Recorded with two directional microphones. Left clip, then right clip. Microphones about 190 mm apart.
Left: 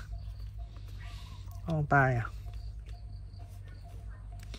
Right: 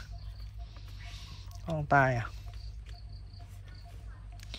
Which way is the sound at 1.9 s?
Centre (ahead or behind).